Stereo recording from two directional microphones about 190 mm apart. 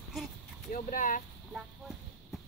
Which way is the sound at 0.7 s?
45° left (ahead or behind).